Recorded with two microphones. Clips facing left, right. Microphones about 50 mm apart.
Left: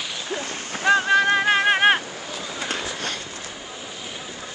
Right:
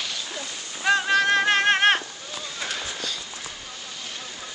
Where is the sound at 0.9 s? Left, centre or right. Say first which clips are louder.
Left 3 dB; centre.